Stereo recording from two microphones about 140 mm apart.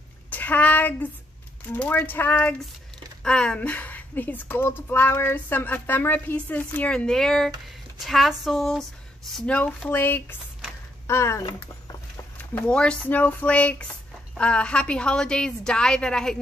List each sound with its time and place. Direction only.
0.3 s a woman's voice: 10° left (ahead or behind)
12.4 s a woman's voice: 10° left (ahead or behind)